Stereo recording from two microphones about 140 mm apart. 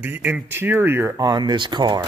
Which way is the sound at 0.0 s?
15° right (ahead or behind).